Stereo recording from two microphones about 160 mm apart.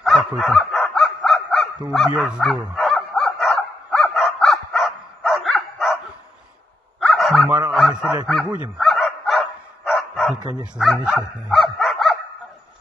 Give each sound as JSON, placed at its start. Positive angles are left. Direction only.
{"t": 0.0, "sound": "dog", "side_deg": 0}
{"t": 7.0, "sound": "dog", "side_deg": 0}